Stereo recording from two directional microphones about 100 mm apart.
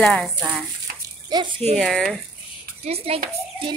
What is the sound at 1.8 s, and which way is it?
Speech, centre (ahead or behind).